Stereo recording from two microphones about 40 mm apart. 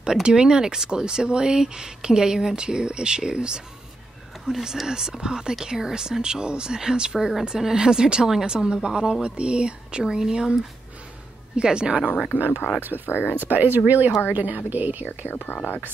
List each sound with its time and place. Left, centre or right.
0.1 s speech: centre
4.5 s speech: centre
7.2 s speech: centre; by 12.0 s right
12.3 s speech: left
13.0 s speech: left
13.4 s speech: right
14.2 s a woman's voice: right
15.0 s speech: left